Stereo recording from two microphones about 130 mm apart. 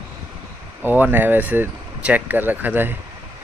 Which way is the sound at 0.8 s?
15° right (ahead or behind).